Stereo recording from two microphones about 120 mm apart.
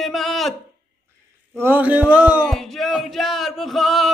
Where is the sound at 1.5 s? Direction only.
15° right (ahead or behind).